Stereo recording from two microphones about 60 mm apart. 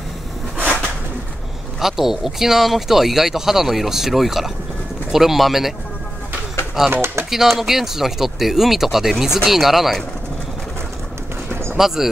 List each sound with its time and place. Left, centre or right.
1.8 s speech: centre
6.9 s speech: right
7.2 s speech: centre
11.7 s speech: centre